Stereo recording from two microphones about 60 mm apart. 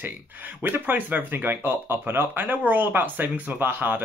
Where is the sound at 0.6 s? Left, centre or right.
Right.